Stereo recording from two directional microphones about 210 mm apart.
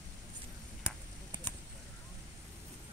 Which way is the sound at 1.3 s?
20° right (ahead or behind).